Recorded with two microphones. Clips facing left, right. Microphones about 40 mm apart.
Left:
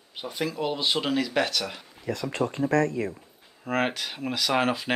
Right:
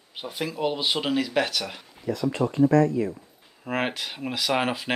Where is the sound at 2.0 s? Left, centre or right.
Left.